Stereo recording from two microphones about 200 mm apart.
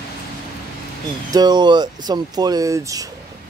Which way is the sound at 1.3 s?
20° right (ahead or behind).